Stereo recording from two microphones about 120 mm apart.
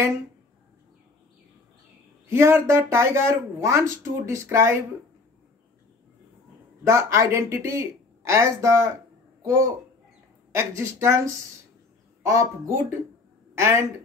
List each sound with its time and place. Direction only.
2.2 s speech: 20° right (ahead or behind)
6.8 s a child's voice: 25° right (ahead or behind)